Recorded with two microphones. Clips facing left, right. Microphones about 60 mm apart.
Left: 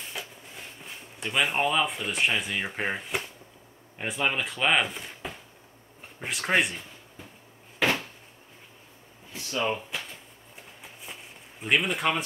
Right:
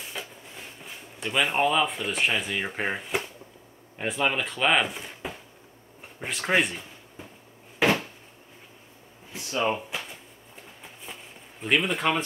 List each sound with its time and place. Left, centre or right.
0.5 s speech: centre
9.3 s a sound: right
9.7 s speech: centre
11.6 s speech: centre